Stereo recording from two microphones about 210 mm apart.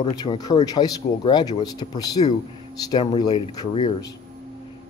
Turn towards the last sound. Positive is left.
turn(degrees=20)  # may be behind; listen again after turning